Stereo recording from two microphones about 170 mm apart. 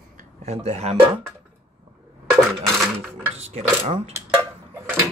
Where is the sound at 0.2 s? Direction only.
40° right (ahead or behind).